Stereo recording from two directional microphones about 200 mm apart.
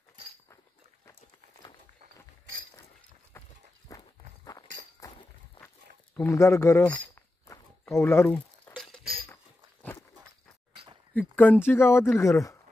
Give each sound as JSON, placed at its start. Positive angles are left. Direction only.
{"t": 3.3, "sound": "walk", "side_deg": 15}
{"t": 5.6, "sound": "walk", "side_deg": 25}
{"t": 6.1, "sound": "a sound", "side_deg": 15}
{"t": 11.1, "sound": "speech", "side_deg": 10}